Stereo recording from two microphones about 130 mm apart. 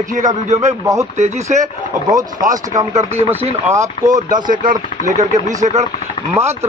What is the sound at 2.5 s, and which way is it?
Speech, 25° right (ahead or behind).